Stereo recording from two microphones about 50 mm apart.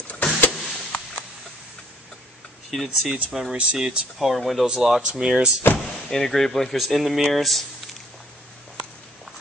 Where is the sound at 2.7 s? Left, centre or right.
Centre.